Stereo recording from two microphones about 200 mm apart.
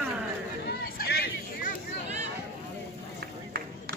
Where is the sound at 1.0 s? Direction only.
50° left (ahead or behind).